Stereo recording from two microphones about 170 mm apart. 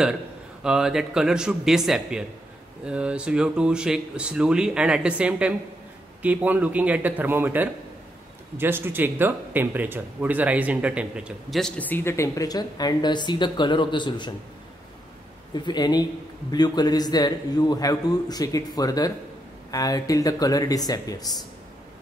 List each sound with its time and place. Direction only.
0.7 s a man's voice: 5° right (ahead or behind); by 14.3 s 25° left (ahead or behind)
15.5 s a man's voice: 25° left (ahead or behind)